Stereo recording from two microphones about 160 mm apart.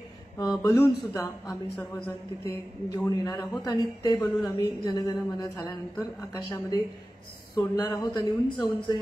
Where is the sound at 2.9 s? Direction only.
25° left (ahead or behind).